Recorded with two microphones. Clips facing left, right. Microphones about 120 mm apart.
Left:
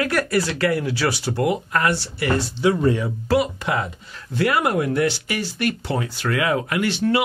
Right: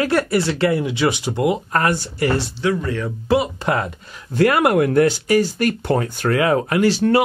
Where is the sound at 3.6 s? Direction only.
45° right (ahead or behind).